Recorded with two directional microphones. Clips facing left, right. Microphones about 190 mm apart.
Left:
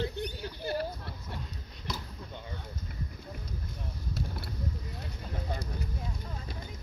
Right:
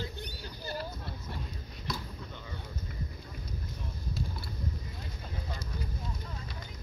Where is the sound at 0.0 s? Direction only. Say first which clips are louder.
Left 7 dB; 65° left (ahead or behind).